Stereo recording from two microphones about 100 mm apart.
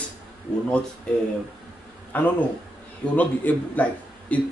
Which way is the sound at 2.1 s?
15° left (ahead or behind).